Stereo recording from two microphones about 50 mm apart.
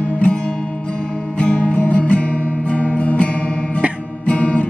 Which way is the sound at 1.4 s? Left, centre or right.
Left.